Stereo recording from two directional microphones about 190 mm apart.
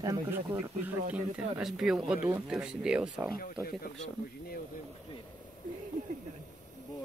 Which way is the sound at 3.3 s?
50° left (ahead or behind).